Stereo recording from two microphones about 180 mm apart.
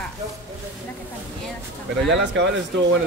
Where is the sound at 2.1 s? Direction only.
90° right.